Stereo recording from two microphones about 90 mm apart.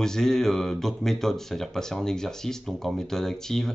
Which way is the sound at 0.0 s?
5° left (ahead or behind).